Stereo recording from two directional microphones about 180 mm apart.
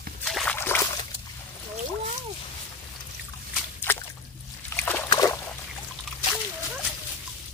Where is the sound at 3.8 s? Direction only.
10° left (ahead or behind).